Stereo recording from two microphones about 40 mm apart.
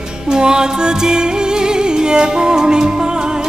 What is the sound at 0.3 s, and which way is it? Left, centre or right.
Music, centre.